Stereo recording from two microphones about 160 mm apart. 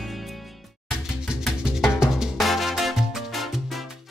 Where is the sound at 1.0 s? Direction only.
Centre (ahead or behind).